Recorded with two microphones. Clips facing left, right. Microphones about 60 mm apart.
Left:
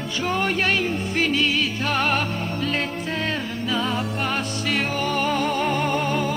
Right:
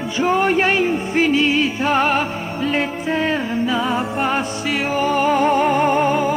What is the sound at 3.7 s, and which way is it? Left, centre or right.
Music, centre.